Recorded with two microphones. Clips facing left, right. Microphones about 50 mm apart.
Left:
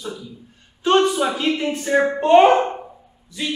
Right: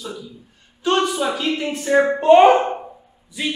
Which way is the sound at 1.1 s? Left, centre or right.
Centre.